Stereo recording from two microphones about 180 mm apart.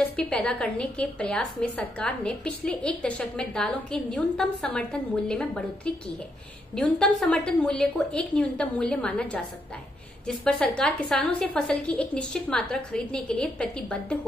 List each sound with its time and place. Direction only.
0.1 s a woman's voice: 5° left (ahead or behind)